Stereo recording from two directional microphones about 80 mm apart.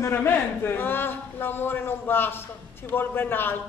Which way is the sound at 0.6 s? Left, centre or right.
Left.